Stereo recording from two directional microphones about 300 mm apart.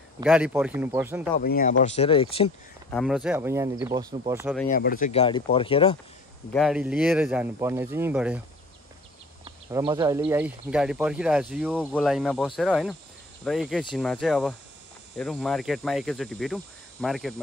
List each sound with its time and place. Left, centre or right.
0.2 s speech: centre
1.3 s speech: left
2.9 s speech: centre
4.6 s speech: left
6.5 s speech: centre
9.4 s speech: centre